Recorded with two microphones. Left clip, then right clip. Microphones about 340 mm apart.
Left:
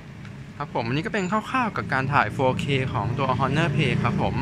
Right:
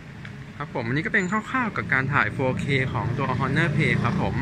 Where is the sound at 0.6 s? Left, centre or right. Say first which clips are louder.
Left 1 dB; centre.